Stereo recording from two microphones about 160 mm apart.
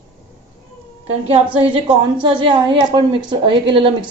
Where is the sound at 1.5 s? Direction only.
30° right (ahead or behind).